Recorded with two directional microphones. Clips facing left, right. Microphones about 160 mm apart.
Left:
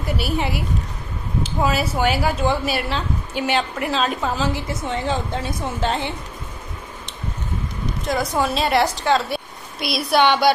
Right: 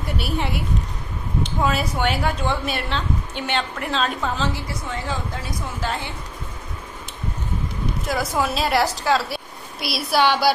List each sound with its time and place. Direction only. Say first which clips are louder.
0.0 s speech: left 2 dB; centre (ahead or behind)
4.6 s a woman's voice: left 4 dB; 20° left (ahead or behind)
8.0 s a woman's voice: left 2 dB; 5° right (ahead or behind)